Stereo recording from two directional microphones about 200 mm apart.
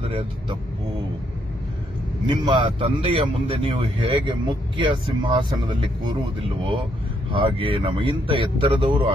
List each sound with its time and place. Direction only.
0.0 s speech: 30° right (ahead or behind)
2.2 s speech: 20° right (ahead or behind)
7.3 s speech: 25° right (ahead or behind)